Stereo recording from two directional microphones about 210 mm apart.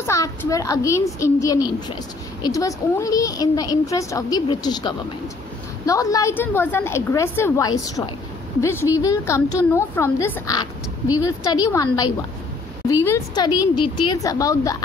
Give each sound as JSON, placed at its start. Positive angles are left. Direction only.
{"t": 0.0, "sound": "a child's voice", "side_deg": 15}